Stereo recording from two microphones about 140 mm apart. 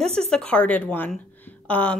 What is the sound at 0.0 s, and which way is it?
A woman's voice, 5° left (ahead or behind).